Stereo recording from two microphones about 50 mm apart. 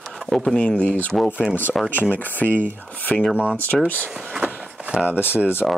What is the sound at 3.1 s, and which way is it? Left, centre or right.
Speech, left.